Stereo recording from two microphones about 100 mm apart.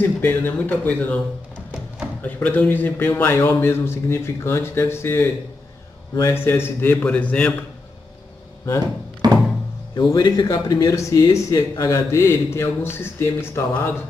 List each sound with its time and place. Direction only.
0.2 s speech: 20° left (ahead or behind)
2.2 s speech: 15° left (ahead or behind)
6.2 s speech: 25° left (ahead or behind)
9.2 s music: 45° right (ahead or behind)
9.9 s speech: 40° left (ahead or behind); by 13.9 s 25° left (ahead or behind)